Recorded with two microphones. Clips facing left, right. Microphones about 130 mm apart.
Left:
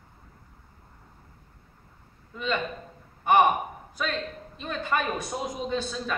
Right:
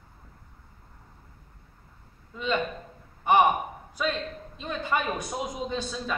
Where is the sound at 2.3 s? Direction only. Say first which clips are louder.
Right 1 dB; 20° right (ahead or behind).